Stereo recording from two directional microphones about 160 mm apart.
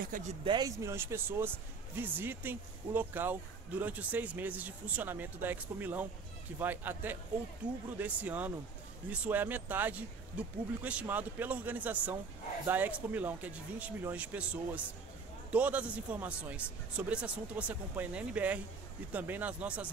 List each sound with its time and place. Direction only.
0.1 s speech: 55° right (ahead or behind)
0.5 s speech: 25° right (ahead or behind)